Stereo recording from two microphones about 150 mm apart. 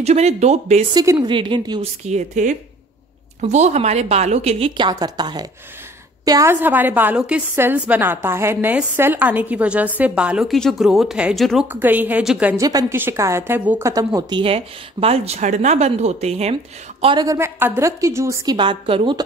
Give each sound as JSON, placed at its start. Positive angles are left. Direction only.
{"t": 0.0, "sound": "speech", "side_deg": -45}
{"t": 0.9, "sound": "a woman's voice", "side_deg": -30}
{"t": 2.0, "sound": "a woman's voice", "side_deg": -50}
{"t": 11.6, "sound": "a woman's voice", "side_deg": -15}
{"t": 12.5, "sound": "a woman's voice", "side_deg": -20}
{"t": 14.4, "sound": "speech", "side_deg": -40}
{"t": 17.0, "sound": "a woman's voice", "side_deg": -30}